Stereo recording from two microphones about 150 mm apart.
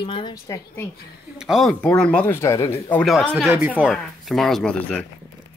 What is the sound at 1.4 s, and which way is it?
Speech, centre (ahead or behind).